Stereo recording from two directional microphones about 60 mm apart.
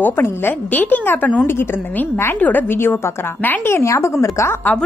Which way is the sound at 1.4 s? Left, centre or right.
Left.